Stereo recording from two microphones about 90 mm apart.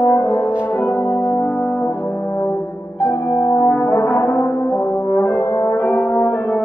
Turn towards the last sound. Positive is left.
turn(degrees=25)  # may be behind; listen again after turning